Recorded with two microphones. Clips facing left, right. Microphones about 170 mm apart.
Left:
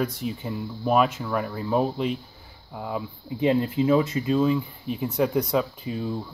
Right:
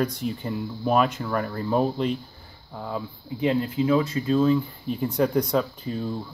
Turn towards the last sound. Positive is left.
turn(degrees=5)  # may be behind; listen again after turning